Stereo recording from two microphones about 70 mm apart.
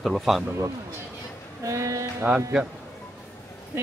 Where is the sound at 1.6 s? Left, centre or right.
Right.